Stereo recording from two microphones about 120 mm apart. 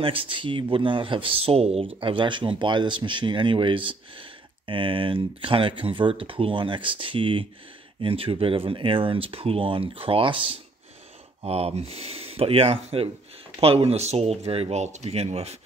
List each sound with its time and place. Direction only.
0.0 s speech: 50° right (ahead or behind)
2.0 s speech: 45° right (ahead or behind)
11.4 s speech: 60° right (ahead or behind)